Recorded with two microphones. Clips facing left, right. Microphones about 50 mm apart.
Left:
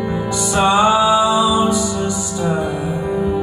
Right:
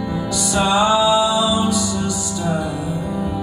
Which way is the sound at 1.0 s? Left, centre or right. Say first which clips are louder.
Left 2 dB; left.